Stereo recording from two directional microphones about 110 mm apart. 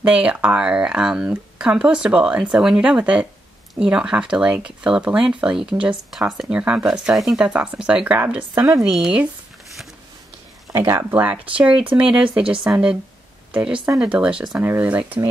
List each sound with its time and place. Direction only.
0.0 s speech: 10° right (ahead or behind)
10.7 s speech: 20° right (ahead or behind)